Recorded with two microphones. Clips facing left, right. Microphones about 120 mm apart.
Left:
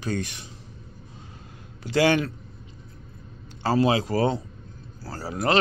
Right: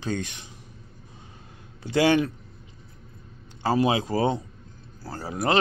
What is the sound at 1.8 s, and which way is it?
Speech, 20° right (ahead or behind).